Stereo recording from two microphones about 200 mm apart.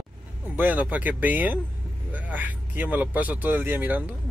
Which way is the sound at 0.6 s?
5° right (ahead or behind).